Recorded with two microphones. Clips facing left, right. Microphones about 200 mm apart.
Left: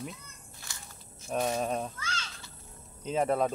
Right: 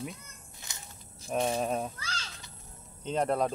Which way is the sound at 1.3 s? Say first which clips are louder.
Right 1 dB; centre (ahead or behind).